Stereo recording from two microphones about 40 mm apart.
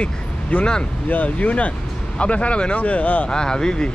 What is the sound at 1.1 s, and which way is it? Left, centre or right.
Speech, left.